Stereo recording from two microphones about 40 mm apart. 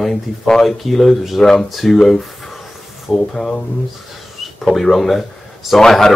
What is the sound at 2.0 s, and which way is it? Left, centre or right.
Speech, centre.